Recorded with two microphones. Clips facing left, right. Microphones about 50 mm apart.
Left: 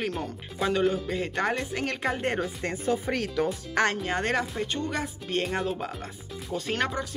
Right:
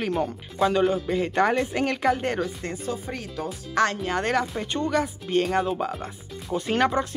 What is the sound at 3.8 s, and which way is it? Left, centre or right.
Speech, left.